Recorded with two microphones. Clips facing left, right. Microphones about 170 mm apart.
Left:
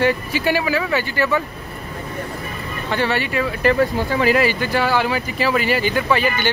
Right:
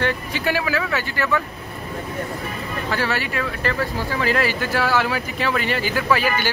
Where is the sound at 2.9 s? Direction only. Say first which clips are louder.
Left 4 dB; centre (ahead or behind).